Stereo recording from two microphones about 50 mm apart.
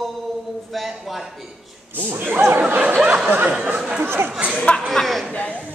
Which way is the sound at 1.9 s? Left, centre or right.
Right.